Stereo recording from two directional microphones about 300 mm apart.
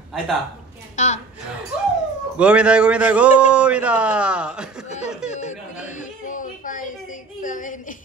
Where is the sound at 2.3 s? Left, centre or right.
Centre.